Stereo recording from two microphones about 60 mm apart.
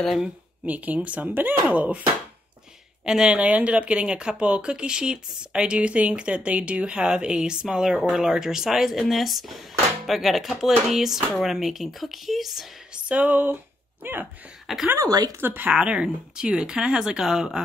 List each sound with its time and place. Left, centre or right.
0.7 s speech: right
3.1 s speech: centre
12.9 s a sound: right
15.0 s speech: right
15.4 s speech: right
15.8 s speech: centre